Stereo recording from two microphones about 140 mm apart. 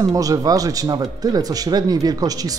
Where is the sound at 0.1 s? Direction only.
25° right (ahead or behind).